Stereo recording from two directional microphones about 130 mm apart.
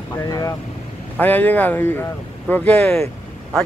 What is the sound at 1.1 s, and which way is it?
Speech, 15° left (ahead or behind).